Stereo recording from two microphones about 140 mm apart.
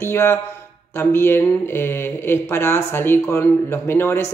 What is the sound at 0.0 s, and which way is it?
Speech, 15° left (ahead or behind).